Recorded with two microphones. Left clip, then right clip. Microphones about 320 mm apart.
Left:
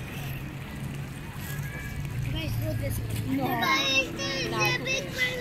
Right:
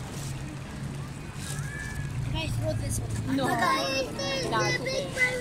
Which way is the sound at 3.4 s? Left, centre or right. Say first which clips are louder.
Even; right.